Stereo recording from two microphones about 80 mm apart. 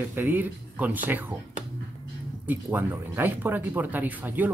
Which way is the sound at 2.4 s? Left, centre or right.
Right.